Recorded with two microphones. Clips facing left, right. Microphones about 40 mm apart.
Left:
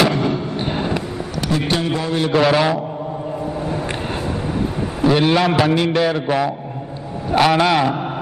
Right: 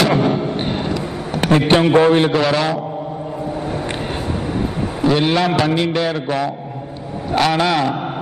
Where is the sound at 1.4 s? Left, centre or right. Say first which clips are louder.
Right 7 dB; right.